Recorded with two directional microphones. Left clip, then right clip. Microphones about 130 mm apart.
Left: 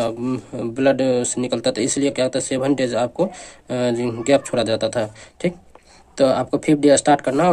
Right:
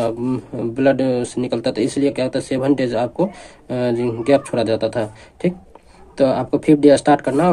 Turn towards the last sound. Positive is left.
turn(degrees=15)  # may be behind; listen again after turning